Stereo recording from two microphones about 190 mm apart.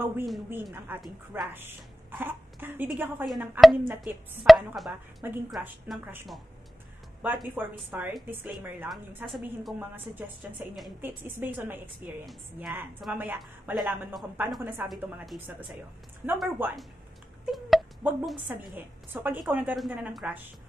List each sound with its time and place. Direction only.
0.9 s a woman's voice: 10° right (ahead or behind)
3.3 s chopping: 10° right (ahead or behind)
5.5 s a woman's voice: 5° right (ahead or behind)
9.3 s chopping: centre (ahead or behind)
9.8 s a woman's voice: 10° right (ahead or behind)
14.9 s chopping: centre (ahead or behind)
16.3 s a woman's voice: 10° right (ahead or behind)
17.5 s a sound: centre (ahead or behind)
18.8 s a woman's voice: 10° right (ahead or behind)